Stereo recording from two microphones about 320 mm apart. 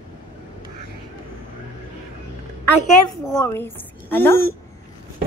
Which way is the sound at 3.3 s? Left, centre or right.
Centre.